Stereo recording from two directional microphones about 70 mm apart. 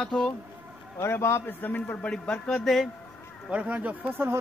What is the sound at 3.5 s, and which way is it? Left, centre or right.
Speech, centre.